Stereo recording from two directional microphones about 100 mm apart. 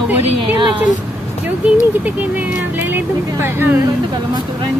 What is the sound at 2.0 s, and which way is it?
Speech, 15° right (ahead or behind).